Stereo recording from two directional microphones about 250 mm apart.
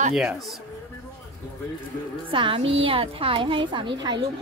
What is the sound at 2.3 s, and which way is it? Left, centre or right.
Speech, right.